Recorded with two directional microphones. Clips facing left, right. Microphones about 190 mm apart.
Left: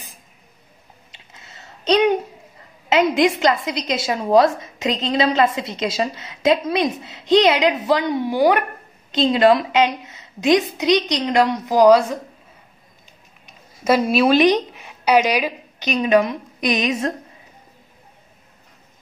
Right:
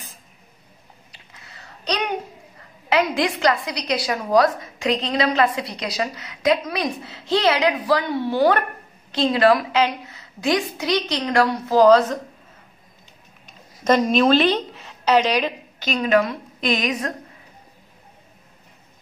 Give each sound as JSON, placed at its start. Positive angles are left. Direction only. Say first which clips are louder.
{"t": 1.1, "sound": "a sound", "louder": "left 2 dB", "side_deg": 25}
{"t": 2.9, "sound": "a woman's voice", "louder": "left 4 dB", "side_deg": 20}
{"t": 13.8, "sound": "a woman's voice", "louder": "left 1 dB", "side_deg": 5}